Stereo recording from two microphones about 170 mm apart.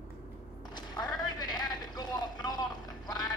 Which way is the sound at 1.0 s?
25° left (ahead or behind).